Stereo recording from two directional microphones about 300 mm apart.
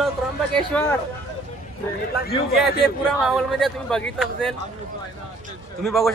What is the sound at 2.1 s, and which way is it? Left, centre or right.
Speech, left.